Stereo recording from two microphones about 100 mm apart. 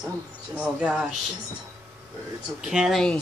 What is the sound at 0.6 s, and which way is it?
Speech, 10° right (ahead or behind).